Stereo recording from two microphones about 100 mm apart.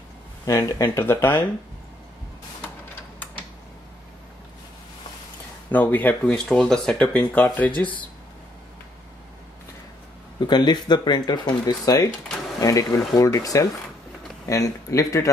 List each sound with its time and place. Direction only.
0.5 s speech: 35° left (ahead or behind)
5.7 s speech: 15° left (ahead or behind)
7.4 s speech: 15° left (ahead or behind)
10.4 s speech: 45° left (ahead or behind)